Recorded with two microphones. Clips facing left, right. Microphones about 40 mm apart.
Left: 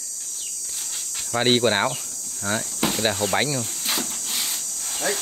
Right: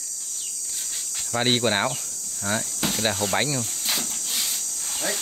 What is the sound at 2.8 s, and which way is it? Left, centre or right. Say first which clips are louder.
Snake: left 3 dB; centre.